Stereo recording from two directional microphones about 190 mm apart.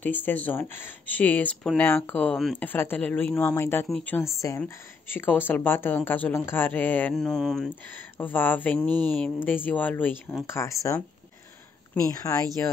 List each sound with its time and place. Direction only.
0.0 s speech: 10° left (ahead or behind)
12.1 s speech: 20° left (ahead or behind)